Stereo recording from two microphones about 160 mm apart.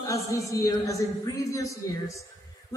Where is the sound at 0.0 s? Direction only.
20° left (ahead or behind).